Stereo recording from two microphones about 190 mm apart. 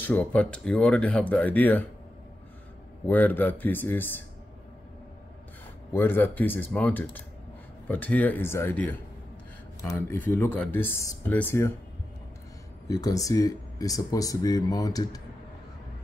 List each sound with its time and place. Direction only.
0.0 s speech: 10° left (ahead or behind)
3.1 s speech: 10° left (ahead or behind)
5.9 s speech: 10° left (ahead or behind)
12.8 s speech: 20° left (ahead or behind)